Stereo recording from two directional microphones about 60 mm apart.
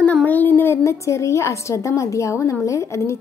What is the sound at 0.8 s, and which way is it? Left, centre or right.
A woman's voice, left.